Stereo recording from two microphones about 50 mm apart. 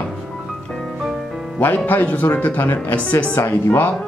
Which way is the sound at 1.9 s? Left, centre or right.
Left.